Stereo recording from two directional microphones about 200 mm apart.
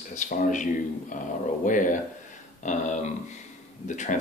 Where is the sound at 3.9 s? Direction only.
40° left (ahead or behind).